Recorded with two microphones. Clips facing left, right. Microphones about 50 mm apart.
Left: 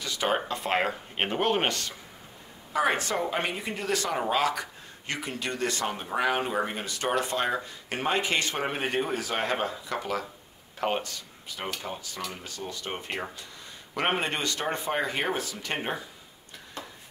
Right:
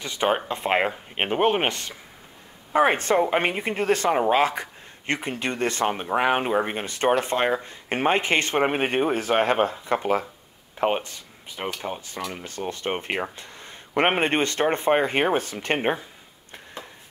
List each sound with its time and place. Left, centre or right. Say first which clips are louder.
0.0 s speech: right 4 dB; right
2.7 s speech: right 6 dB; right
10.8 s speech: right 5 dB; right